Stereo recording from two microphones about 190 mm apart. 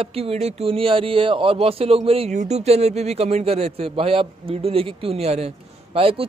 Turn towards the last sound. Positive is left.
turn(degrees=-30)  # may be behind; listen again after turning